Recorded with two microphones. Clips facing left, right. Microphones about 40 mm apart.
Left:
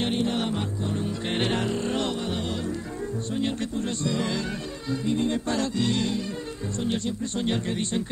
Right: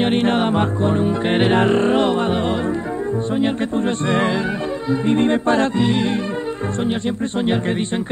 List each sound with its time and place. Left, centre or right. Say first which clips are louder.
0.0 s music: right 9 dB; right
1.7 s speech: right 12 dB; right
2.0 s music: right 11 dB; right
3.3 s speech: right 7 dB; right
5.0 s music: right 9 dB; right
5.9 s speech: right 7 dB; right